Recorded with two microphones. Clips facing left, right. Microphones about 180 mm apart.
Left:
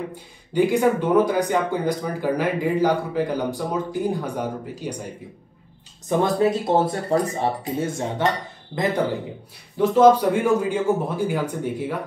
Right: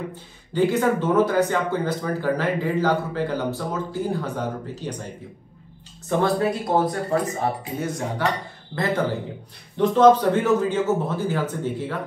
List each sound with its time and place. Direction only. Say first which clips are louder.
0.1 s speech: left 2 dB; 15° left (ahead or behind)